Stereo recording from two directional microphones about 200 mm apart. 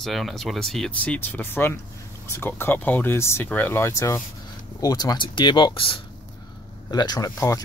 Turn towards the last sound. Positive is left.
turn(degrees=15)  # may be behind; listen again after turning